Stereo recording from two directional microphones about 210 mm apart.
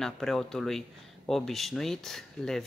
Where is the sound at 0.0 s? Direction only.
Centre (ahead or behind).